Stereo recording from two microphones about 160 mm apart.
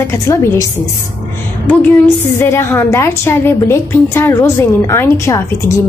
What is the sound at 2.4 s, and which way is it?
A woman's voice, 15° left (ahead or behind).